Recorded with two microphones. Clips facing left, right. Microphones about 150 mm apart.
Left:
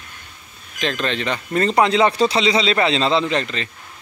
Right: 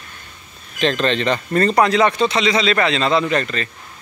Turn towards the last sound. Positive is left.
turn(degrees=20)  # may be behind; listen again after turning